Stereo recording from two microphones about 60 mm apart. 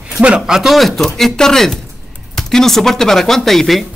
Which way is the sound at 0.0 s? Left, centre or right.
Centre.